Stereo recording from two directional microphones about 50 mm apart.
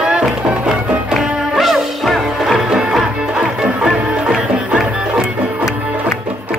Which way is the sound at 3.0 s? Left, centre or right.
Centre.